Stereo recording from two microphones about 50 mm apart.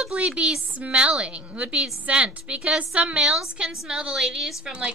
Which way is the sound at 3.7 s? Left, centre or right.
Centre.